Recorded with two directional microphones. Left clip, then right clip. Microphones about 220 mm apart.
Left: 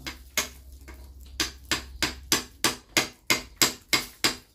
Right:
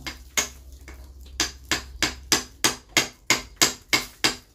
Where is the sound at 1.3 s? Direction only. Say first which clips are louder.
Right 3 dB; centre (ahead or behind).